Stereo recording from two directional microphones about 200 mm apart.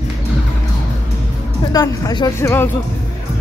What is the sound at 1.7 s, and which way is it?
Speech, 20° left (ahead or behind).